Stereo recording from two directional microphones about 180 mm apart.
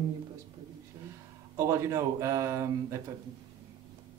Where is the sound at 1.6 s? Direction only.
15° right (ahead or behind).